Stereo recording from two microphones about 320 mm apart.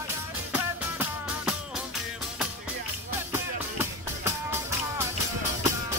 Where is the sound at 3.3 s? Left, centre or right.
Centre.